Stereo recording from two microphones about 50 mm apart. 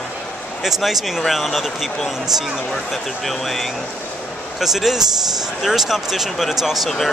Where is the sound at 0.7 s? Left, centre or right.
Centre.